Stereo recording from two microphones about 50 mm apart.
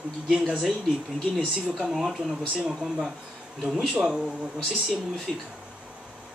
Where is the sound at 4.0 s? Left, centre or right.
Centre.